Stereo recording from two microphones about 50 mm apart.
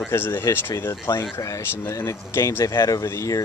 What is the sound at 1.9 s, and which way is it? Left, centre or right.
Speech, left.